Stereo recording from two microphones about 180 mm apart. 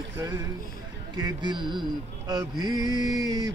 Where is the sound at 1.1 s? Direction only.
25° right (ahead or behind).